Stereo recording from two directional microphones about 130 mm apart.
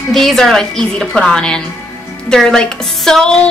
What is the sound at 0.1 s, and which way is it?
A woman's voice, centre (ahead or behind).